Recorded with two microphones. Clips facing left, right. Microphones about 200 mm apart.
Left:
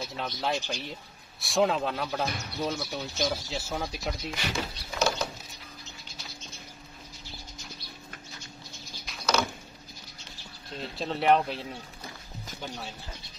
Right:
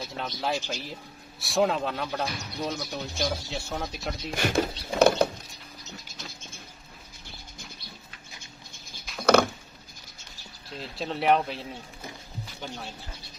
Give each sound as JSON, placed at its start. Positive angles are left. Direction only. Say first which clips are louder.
{"t": 0.0, "sound": "speech", "louder": "even", "side_deg": 0}
{"t": 4.3, "sound": "speech", "louder": "right 7 dB", "side_deg": -50}
{"t": 9.2, "sound": "a sound", "louder": "right 8 dB", "side_deg": -55}
{"t": 10.8, "sound": "speech", "louder": "even", "side_deg": 0}
{"t": 12.6, "sound": "speech", "louder": "even", "side_deg": 0}